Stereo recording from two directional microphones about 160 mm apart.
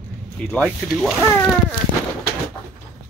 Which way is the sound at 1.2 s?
15° left (ahead or behind).